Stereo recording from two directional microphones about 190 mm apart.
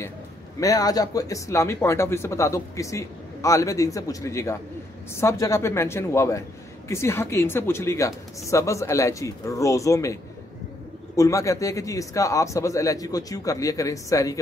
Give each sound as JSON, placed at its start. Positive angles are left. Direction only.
{"t": 0.6, "sound": "speech", "side_deg": 20}
{"t": 11.1, "sound": "speech", "side_deg": 15}